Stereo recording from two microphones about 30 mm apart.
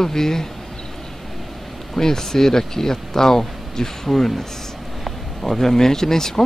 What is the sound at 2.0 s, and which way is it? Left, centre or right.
Speech, centre.